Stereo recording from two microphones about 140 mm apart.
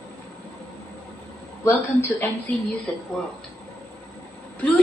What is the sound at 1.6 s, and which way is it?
Speech, 15° left (ahead or behind).